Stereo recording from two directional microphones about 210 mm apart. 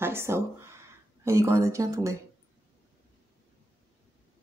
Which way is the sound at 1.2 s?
15° right (ahead or behind).